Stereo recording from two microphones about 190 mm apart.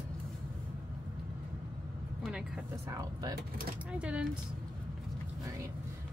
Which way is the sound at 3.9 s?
5° right (ahead or behind).